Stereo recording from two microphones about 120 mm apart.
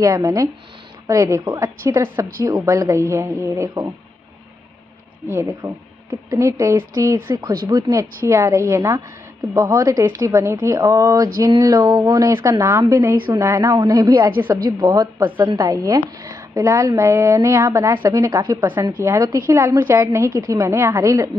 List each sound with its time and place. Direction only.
0.0 s a woman's voice: 30° right (ahead or behind)
5.3 s a woman's voice: 20° right (ahead or behind)